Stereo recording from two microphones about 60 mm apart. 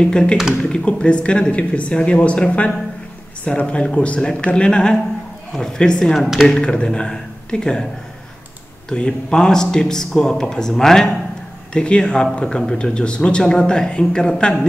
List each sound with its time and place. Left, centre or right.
0.0 s speech: centre
0.4 s speech: centre
0.7 s speech: centre
6.6 s speech: centre
8.8 s speech: centre